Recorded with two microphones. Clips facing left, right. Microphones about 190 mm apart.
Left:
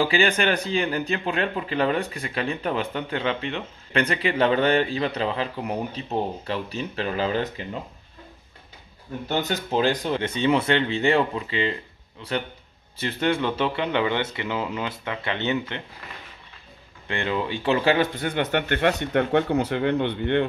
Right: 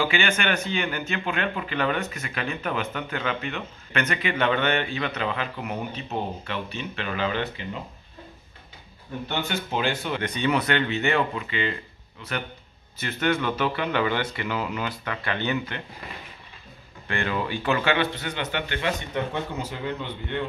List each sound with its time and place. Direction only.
0.0 s speech: 35° left (ahead or behind)
9.3 s speech: 40° left (ahead or behind); by 15.8 s 20° left (ahead or behind)
17.1 s speech: 20° left (ahead or behind)
17.9 s speech: 50° left (ahead or behind)